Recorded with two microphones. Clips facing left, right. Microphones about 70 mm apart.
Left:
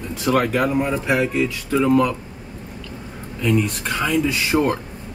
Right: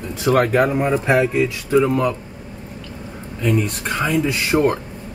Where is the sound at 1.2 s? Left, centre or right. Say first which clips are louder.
Right 2 dB; centre.